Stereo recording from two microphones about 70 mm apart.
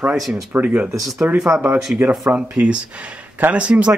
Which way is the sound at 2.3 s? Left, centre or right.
Centre.